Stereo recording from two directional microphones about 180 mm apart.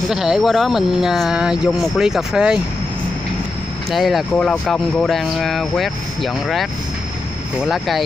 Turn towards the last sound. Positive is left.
turn(degrees=0)  # may be behind; listen again after turning